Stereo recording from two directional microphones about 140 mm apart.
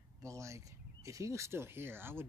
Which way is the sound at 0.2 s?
20° right (ahead or behind).